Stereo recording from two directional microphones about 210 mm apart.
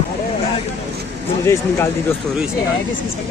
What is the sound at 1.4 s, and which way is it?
Speech, 15° left (ahead or behind).